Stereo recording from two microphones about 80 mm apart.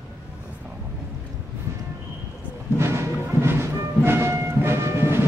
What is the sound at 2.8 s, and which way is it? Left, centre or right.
Music, right.